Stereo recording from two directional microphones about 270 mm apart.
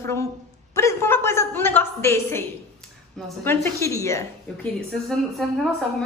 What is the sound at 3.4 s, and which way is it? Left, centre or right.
A woman's voice, centre.